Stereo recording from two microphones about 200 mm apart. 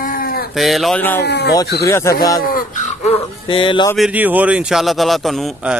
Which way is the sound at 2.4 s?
40° left (ahead or behind).